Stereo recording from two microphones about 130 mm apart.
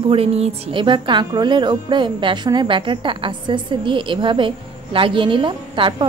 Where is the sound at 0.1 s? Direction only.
50° right (ahead or behind).